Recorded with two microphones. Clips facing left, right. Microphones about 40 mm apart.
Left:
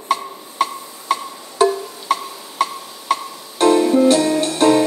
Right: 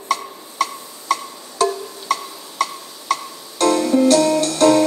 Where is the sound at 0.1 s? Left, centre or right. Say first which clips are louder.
Left 2 dB; left.